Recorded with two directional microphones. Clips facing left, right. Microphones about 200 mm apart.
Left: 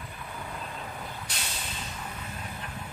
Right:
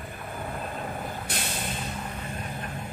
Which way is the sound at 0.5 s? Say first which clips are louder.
Right 5 dB; 50° right (ahead or behind).